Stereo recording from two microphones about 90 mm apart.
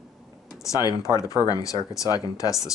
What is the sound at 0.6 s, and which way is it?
Speech, 45° left (ahead or behind).